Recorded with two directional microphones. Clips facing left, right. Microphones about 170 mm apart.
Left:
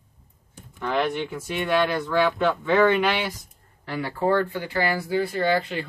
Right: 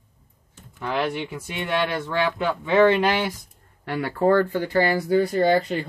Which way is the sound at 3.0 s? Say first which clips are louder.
Right 2 dB; 40° right (ahead or behind).